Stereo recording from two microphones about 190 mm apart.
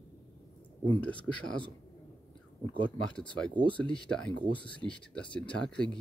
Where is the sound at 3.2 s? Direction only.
5° left (ahead or behind).